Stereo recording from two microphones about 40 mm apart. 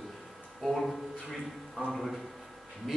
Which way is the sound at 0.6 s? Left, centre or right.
Centre.